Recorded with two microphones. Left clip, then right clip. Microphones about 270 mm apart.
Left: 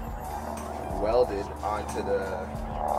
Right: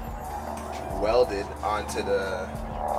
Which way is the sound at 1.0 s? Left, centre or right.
Centre.